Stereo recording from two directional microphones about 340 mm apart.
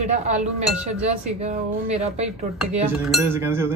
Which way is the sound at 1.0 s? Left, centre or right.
Centre.